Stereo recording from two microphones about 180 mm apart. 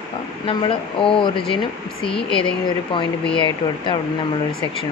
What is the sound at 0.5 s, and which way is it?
Speech, 30° left (ahead or behind).